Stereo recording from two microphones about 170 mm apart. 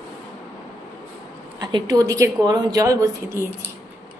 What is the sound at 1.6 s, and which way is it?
Speech, 25° right (ahead or behind).